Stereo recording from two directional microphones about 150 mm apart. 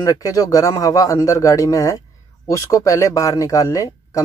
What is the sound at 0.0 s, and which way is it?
Speech, 25° left (ahead or behind).